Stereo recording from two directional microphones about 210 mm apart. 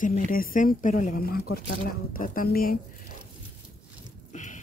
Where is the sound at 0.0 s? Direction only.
40° left (ahead or behind).